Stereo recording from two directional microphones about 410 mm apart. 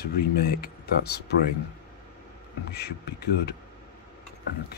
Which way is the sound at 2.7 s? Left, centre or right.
Left.